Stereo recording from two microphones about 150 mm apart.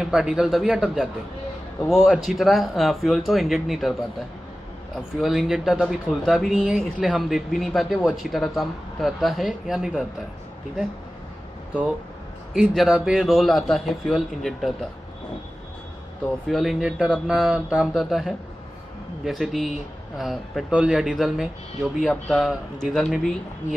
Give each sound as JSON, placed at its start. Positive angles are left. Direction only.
{"t": 0.0, "sound": "speech", "side_deg": -5}
{"t": 4.9, "sound": "speech", "side_deg": 0}
{"t": 12.5, "sound": "speech", "side_deg": 0}
{"t": 16.4, "sound": "speech", "side_deg": 0}